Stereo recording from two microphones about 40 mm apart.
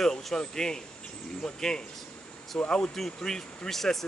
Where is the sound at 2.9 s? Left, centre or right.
Centre.